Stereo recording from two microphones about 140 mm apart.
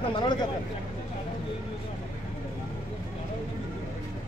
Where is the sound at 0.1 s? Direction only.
30° left (ahead or behind).